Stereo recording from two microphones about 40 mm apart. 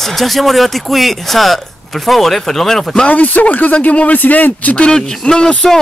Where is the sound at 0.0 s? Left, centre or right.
Centre.